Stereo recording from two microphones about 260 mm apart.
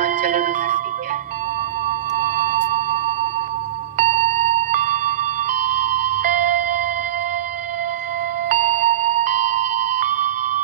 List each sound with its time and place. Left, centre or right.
0.0 s music: right
2.1 s music: right
4.0 s music: right
8.5 s music: right